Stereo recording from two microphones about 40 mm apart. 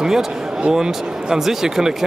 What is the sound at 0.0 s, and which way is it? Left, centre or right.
Speech, centre.